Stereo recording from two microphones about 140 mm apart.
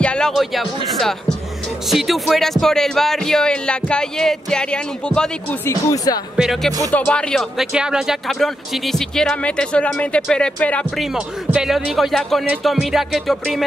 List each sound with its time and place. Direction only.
0.0 s speech: 5° left (ahead or behind)
5.7 s speech: 20° left (ahead or behind)
6.3 s speech: centre (ahead or behind)
11.0 s speech: 5° right (ahead or behind)